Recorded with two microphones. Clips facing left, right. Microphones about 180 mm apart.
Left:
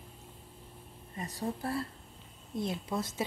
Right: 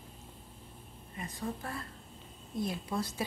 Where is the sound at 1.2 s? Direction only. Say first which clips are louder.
Left 3 dB; 35° left (ahead or behind).